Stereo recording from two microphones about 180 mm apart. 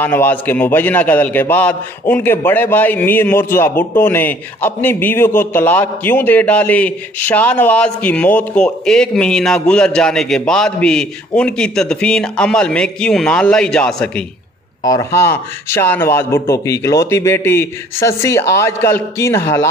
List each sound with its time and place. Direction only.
0.0 s a man's voice: 10° left (ahead or behind)
14.9 s a man's voice: 20° left (ahead or behind)